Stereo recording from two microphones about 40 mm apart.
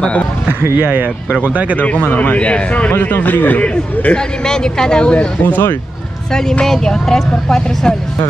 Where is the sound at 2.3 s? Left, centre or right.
Left.